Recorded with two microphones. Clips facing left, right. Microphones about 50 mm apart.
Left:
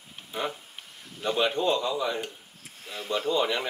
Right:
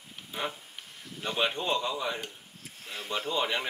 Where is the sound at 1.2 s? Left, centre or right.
Centre.